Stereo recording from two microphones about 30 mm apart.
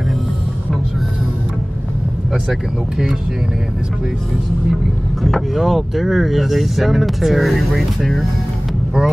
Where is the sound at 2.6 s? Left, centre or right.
Right.